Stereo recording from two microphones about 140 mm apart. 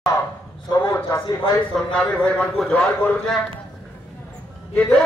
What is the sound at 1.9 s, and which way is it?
A man's voice, 10° left (ahead or behind).